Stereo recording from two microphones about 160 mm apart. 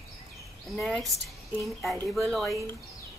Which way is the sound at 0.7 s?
5° left (ahead or behind).